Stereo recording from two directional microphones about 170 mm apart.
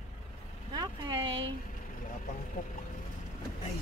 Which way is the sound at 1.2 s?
90° right.